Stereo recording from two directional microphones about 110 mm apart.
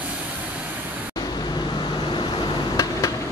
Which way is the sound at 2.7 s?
30° left (ahead or behind).